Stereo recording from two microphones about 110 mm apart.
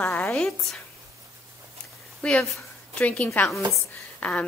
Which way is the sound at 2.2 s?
10° left (ahead or behind).